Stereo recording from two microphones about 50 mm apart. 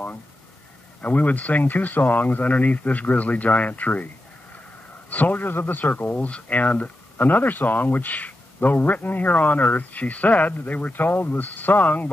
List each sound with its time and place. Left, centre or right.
1.0 s speech: left
5.1 s speech: left